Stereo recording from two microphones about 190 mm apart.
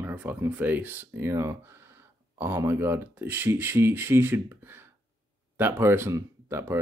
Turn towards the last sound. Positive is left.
turn(degrees=-15)  # may be behind; listen again after turning